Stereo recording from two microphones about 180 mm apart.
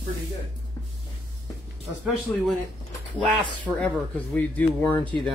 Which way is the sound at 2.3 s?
10° left (ahead or behind).